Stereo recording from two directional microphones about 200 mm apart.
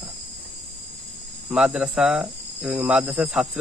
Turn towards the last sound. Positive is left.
turn(degrees=-5)  # may be behind; listen again after turning